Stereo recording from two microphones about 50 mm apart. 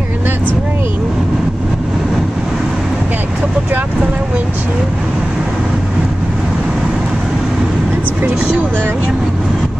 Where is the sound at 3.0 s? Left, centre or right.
Right.